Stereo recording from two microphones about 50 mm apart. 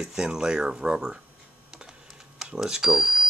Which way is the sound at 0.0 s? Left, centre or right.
Centre.